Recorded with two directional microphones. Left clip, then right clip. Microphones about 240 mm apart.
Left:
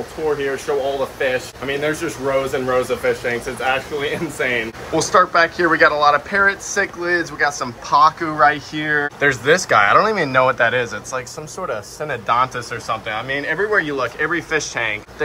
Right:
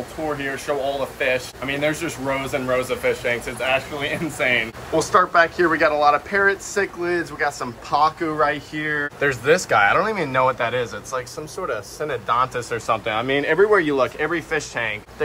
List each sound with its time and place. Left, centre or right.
1.2 s speech: centre
12.7 s speech: centre